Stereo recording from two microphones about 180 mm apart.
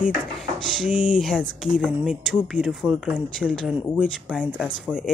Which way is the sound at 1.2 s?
5° right (ahead or behind).